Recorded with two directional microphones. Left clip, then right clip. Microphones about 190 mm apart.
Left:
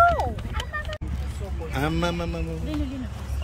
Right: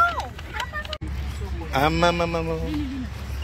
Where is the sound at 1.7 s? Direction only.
10° left (ahead or behind).